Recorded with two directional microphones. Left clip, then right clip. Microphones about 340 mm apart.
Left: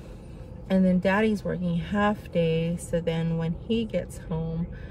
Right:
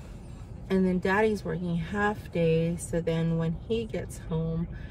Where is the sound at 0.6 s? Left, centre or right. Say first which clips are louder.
Left 3 dB; centre.